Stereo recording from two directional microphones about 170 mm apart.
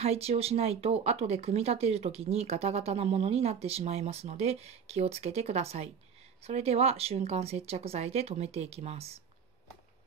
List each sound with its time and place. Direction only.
0.0 s speech: 35° right (ahead or behind)